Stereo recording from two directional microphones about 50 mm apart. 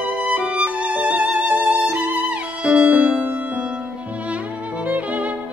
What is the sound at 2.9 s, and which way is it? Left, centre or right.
Music, right.